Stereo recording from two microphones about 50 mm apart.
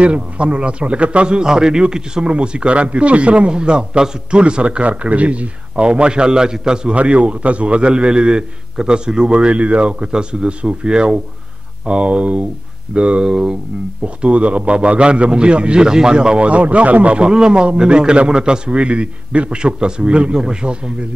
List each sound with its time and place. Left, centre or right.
0.0 s a man's voice: right